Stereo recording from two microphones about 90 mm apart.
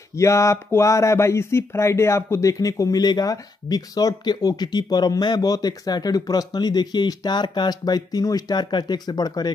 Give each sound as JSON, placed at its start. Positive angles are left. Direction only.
{"t": 0.2, "sound": "speech", "side_deg": 35}